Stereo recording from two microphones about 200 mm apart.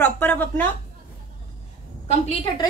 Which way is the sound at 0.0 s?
10° left (ahead or behind).